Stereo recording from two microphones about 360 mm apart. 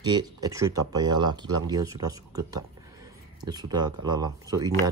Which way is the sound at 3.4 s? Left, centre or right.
Centre.